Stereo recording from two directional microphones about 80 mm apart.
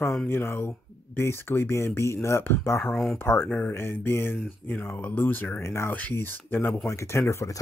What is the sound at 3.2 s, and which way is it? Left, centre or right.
Speech, left.